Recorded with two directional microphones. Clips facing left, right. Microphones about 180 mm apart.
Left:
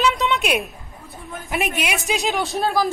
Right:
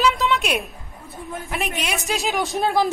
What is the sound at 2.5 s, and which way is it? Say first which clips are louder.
Speech: right 2 dB; 20° right (ahead or behind).